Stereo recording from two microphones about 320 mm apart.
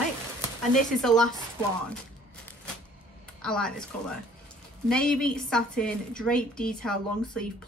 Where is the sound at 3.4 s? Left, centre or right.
Centre.